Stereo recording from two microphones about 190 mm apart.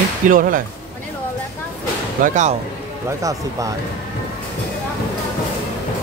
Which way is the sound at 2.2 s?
40° right (ahead or behind).